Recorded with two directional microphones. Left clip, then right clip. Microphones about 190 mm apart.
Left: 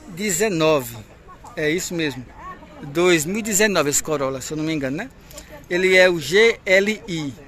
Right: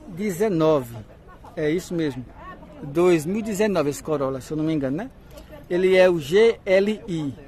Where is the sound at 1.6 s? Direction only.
15° right (ahead or behind).